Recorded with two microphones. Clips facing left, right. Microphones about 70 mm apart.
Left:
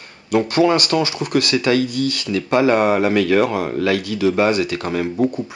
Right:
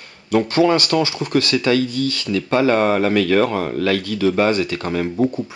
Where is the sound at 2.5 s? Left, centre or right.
Centre.